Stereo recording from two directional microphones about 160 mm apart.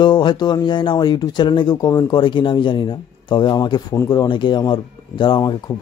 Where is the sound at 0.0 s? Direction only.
30° left (ahead or behind).